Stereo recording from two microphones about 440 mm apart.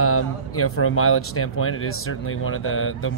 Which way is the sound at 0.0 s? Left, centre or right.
Left.